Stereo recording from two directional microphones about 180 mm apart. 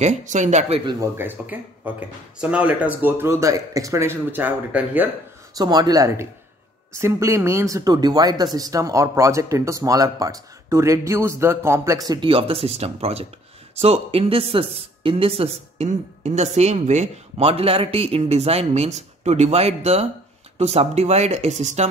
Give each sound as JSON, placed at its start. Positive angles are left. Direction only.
{"t": 0.0, "sound": "speech", "side_deg": -40}
{"t": 0.9, "sound": "speech", "side_deg": -15}
{"t": 5.6, "sound": "speech", "side_deg": -20}